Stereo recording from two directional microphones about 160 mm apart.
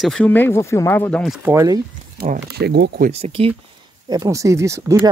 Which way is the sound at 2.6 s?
90° right.